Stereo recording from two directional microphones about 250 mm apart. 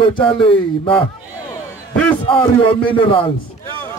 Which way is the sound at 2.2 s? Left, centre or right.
Centre.